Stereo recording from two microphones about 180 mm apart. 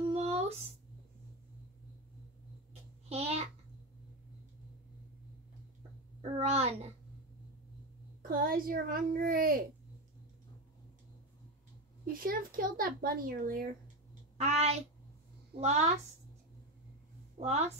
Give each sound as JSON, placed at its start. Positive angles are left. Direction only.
{"t": 0.0, "sound": "a sound", "side_deg": -35}
{"t": 2.7, "sound": "babbling", "side_deg": -35}
{"t": 6.2, "sound": "a sound", "side_deg": -35}
{"t": 8.2, "sound": "speech", "side_deg": -55}
{"t": 12.1, "sound": "speech", "side_deg": -50}
{"t": 14.4, "sound": "speech", "side_deg": -35}
{"t": 17.4, "sound": "speech", "side_deg": -35}